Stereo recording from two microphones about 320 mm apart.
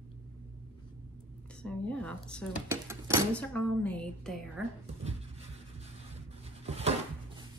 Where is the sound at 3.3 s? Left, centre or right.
Centre.